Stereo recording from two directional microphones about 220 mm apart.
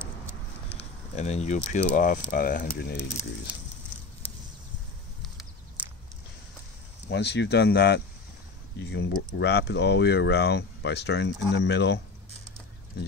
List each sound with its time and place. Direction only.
0.7 s speech: 30° left (ahead or behind)
5.2 s a sound: centre (ahead or behind)
7.1 s speech: 50° left (ahead or behind)